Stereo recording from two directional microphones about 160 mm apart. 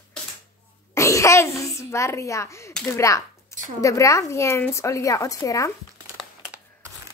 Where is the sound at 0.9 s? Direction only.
20° left (ahead or behind).